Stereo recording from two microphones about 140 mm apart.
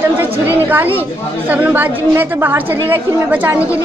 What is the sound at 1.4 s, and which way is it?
A woman's voice, 10° right (ahead or behind).